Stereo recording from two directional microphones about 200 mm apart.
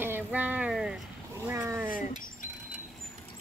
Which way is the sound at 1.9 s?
45° left (ahead or behind).